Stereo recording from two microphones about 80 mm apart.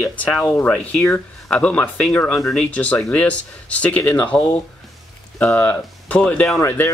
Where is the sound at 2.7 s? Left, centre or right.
Centre.